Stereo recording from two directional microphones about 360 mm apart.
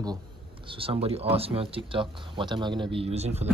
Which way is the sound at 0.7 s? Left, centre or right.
Centre.